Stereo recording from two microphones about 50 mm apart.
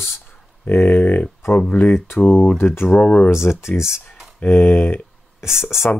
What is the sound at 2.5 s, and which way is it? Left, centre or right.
Speech, left.